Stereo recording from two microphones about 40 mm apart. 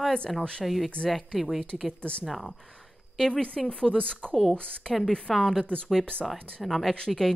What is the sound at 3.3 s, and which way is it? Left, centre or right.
Speech, left.